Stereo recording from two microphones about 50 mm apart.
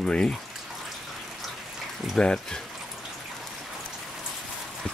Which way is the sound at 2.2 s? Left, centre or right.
Centre.